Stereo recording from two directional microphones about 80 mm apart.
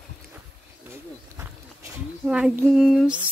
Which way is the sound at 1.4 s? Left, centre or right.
Right.